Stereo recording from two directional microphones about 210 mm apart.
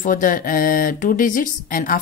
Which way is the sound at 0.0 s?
40° left (ahead or behind).